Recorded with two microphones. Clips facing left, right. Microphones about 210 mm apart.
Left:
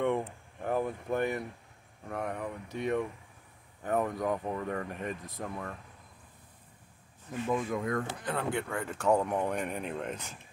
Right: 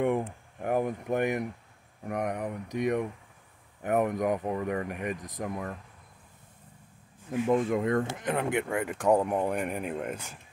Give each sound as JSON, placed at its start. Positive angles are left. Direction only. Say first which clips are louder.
{"t": 0.0, "sound": "speech", "louder": "right 3 dB", "side_deg": -10}
{"t": 7.5, "sound": "speech", "louder": "right 5 dB", "side_deg": -25}